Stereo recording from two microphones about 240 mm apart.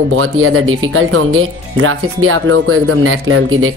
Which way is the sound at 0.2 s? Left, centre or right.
Right.